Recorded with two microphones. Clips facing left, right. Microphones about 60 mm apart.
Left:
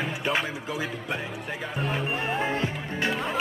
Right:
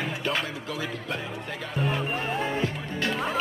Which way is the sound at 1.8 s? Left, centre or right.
Centre.